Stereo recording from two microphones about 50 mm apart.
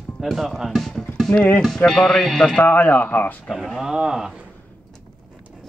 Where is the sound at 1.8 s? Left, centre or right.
Centre.